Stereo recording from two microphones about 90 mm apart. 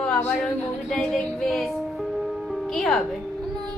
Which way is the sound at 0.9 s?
5° left (ahead or behind).